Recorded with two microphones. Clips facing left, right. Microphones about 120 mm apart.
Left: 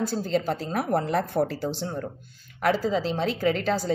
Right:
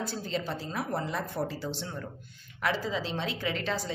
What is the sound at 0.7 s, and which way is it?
Speech, 60° left (ahead or behind).